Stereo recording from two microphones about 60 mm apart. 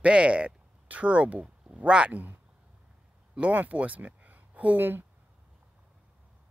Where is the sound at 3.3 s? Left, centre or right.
Right.